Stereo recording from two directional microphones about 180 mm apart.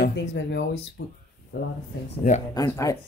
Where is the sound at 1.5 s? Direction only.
90° left.